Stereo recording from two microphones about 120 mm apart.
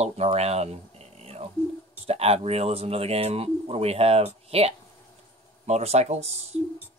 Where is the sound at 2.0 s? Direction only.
55° right (ahead or behind).